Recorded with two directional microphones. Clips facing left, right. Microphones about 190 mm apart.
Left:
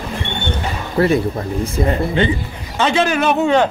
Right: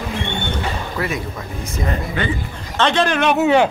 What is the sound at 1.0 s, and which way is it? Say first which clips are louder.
Speech: left 14 dB; 30° left (ahead or behind).